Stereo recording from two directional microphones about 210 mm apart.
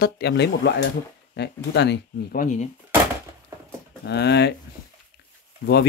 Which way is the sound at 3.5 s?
15° right (ahead or behind).